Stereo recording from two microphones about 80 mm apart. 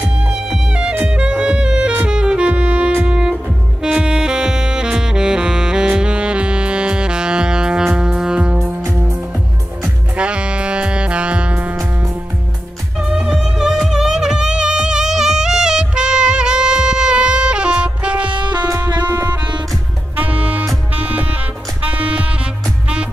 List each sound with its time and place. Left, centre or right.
0.3 s music: centre
3.8 s saxophone: centre
10.1 s music: centre
13.1 s music: centre
18.3 s music: right
19.0 s music: right